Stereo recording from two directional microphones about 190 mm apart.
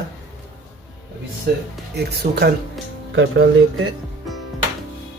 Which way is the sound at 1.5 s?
55° right (ahead or behind).